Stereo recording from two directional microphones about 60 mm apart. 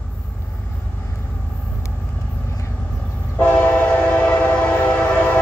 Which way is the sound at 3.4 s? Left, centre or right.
Left.